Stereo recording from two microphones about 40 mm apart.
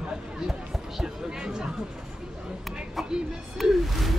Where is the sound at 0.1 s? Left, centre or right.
Centre.